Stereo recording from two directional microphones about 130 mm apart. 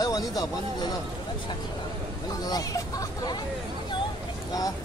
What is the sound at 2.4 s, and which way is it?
Speech, 30° left (ahead or behind).